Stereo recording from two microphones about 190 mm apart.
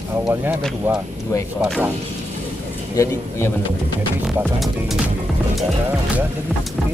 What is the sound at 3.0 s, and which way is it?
Speech, 15° left (ahead or behind).